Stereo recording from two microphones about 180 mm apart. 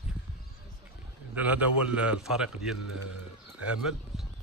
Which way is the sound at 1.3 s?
10° right (ahead or behind).